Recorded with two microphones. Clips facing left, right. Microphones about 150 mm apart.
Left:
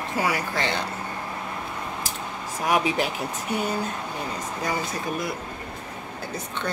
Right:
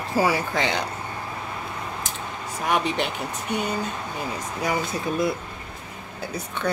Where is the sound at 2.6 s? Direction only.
5° left (ahead or behind).